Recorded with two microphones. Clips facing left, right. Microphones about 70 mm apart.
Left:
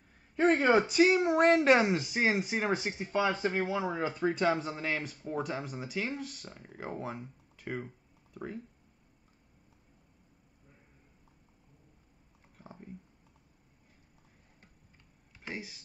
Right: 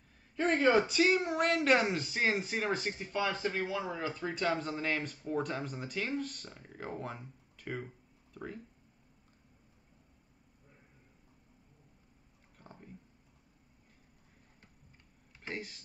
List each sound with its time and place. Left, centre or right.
0.7 s speech: centre
1.4 s speech: left
1.7 s speech: centre
4.6 s speech: centre
12.5 s whispering: centre
15.4 s speech: centre